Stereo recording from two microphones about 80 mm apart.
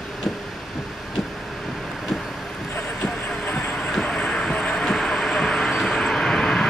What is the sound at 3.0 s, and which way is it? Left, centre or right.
Train, centre.